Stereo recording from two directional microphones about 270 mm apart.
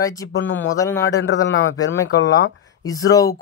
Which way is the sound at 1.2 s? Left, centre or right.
Left.